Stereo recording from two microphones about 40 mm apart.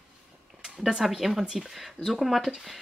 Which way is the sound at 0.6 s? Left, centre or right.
Centre.